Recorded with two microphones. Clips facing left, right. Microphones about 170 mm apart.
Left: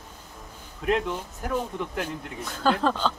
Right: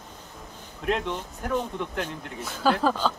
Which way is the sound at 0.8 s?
Centre (ahead or behind).